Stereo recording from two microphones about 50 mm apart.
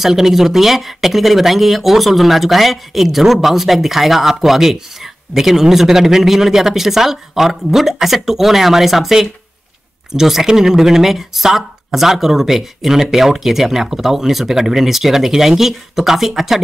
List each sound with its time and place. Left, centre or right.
0.0 s speech: centre